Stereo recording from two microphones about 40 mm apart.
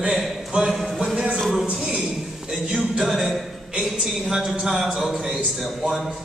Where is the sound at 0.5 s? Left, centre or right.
Centre.